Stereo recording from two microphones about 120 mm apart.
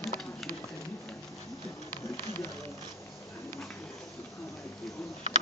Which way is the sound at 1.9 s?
20° left (ahead or behind).